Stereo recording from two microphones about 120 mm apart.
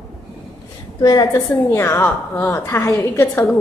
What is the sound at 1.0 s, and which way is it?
Speech, 35° left (ahead or behind).